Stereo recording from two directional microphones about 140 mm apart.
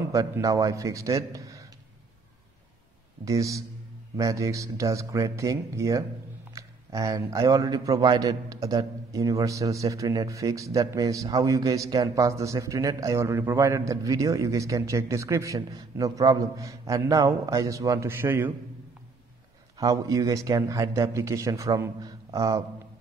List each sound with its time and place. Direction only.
0.1 s a man's voice: 25° right (ahead or behind)
3.3 s a man's voice: 25° right (ahead or behind)
19.8 s a man's voice: 25° right (ahead or behind)